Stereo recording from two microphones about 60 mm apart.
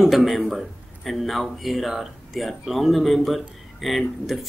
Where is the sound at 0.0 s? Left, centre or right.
Centre.